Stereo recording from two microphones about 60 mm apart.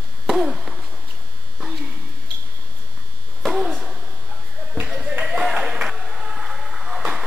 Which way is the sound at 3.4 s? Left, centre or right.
Centre.